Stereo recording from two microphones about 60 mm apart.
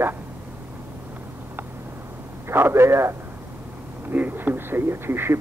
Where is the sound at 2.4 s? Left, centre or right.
Right.